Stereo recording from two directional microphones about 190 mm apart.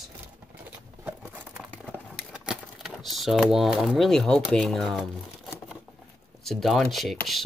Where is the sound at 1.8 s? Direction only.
5° right (ahead or behind).